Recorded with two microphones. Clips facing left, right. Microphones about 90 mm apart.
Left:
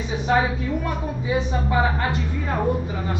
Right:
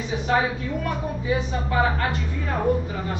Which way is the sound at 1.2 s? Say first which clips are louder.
Left 3 dB; 20° left (ahead or behind).